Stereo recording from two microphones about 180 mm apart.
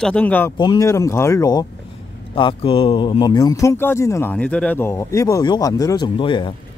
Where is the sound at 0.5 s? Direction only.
25° left (ahead or behind).